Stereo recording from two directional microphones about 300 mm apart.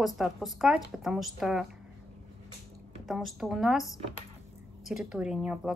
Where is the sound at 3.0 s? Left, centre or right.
Centre.